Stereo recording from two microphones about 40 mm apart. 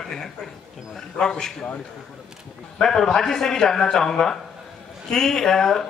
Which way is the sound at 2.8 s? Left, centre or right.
Centre.